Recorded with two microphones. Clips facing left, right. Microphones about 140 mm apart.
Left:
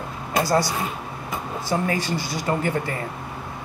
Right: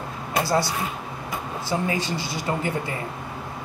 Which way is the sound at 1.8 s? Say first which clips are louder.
Left 1 dB; 20° right (ahead or behind).